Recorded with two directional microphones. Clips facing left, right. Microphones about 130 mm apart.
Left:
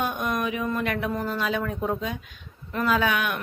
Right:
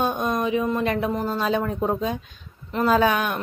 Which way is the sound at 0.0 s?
30° right (ahead or behind).